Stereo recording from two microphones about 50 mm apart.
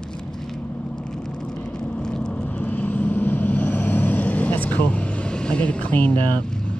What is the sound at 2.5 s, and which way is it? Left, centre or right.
Vehicle, left.